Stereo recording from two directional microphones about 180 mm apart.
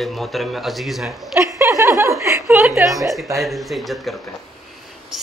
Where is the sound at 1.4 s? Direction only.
15° right (ahead or behind).